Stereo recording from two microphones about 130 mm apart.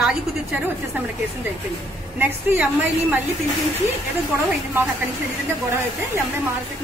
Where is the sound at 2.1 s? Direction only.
15° right (ahead or behind).